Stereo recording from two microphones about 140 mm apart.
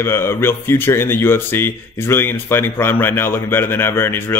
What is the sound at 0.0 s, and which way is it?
Speech, 15° left (ahead or behind).